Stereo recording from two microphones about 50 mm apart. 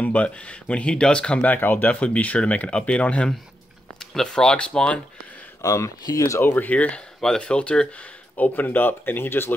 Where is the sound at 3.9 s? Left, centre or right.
Centre.